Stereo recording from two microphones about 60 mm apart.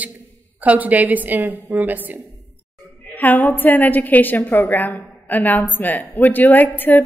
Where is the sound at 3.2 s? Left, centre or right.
Left.